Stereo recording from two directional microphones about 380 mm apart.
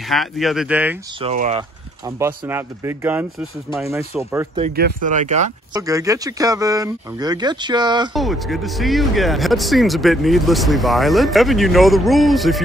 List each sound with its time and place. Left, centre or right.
0.1 s speech: centre
1.2 s speech: centre
4.6 s speech: right
8.1 s speech: centre